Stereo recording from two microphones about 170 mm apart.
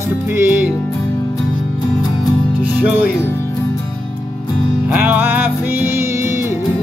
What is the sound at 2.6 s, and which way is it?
Music, 10° right (ahead or behind).